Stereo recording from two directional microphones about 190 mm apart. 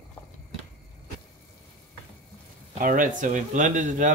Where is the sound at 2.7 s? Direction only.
45° right (ahead or behind).